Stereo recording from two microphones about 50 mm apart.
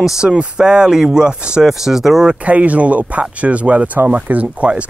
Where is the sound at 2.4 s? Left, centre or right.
Right.